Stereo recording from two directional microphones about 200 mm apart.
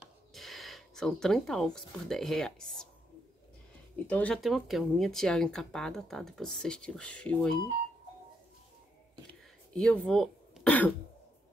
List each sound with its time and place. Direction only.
0.0 s speech: centre (ahead or behind)
4.1 s speech: 5° left (ahead or behind)
9.8 s speech: 5° left (ahead or behind)